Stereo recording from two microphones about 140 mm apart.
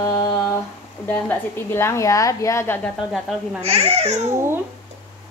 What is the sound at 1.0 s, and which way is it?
A woman's voice, 15° left (ahead or behind).